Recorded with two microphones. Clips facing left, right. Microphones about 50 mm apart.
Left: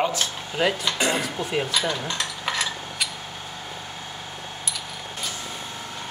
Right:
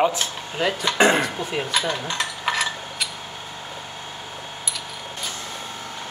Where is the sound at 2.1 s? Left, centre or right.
Centre.